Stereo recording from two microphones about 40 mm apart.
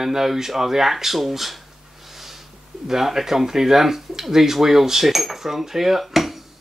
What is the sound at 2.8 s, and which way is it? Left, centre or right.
Speech, centre.